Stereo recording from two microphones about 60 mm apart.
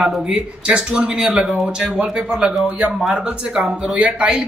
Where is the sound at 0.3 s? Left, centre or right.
Centre.